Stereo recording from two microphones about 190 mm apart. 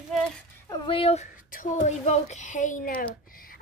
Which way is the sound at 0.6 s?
25° left (ahead or behind).